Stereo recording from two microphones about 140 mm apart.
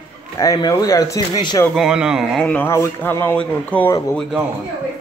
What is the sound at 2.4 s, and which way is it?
Speech, 15° left (ahead or behind).